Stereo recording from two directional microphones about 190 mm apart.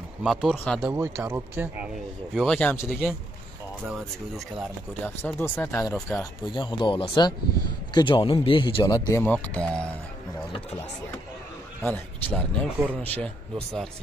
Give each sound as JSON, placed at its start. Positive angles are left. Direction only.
{"t": 0.2, "sound": "speech", "side_deg": -5}
{"t": 2.3, "sound": "speech", "side_deg": 5}
{"t": 2.9, "sound": "speech", "side_deg": 0}
{"t": 5.0, "sound": "speech", "side_deg": 10}
{"t": 11.8, "sound": "speech", "side_deg": 10}